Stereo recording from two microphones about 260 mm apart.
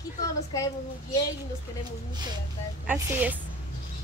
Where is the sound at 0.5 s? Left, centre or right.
Centre.